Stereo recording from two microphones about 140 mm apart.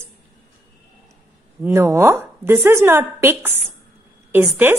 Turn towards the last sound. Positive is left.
turn(degrees=-15)  # may be behind; listen again after turning